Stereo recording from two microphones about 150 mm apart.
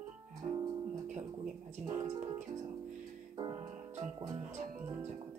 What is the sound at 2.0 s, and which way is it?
Speech, 45° right (ahead or behind).